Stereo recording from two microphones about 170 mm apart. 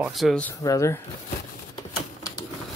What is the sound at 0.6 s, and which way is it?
Speech, 20° left (ahead or behind).